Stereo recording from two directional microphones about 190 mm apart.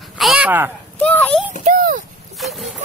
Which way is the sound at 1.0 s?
10° left (ahead or behind).